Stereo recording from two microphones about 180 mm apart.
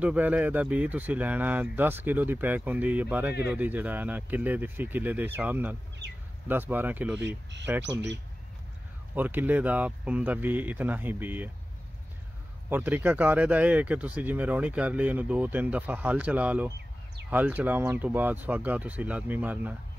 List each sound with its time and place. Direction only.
0.0 s speech: 10° right (ahead or behind)
7.2 s speech: 75° right (ahead or behind)
9.1 s speech: 10° right (ahead or behind)
12.6 s speech: 10° right (ahead or behind)